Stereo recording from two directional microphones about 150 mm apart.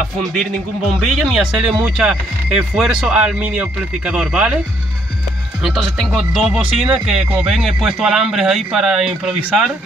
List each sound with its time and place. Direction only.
0.2 s a man's voice: centre (ahead or behind)
5.6 s a man's voice: centre (ahead or behind)